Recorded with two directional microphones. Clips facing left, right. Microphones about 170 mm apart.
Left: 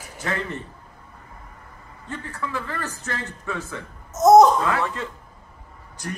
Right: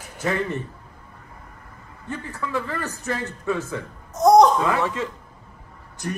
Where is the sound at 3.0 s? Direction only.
20° right (ahead or behind).